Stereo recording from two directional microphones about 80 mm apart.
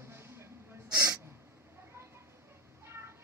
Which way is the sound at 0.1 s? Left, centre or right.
Right.